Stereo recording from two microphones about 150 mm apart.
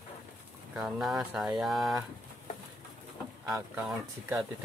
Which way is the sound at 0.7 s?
5° right (ahead or behind).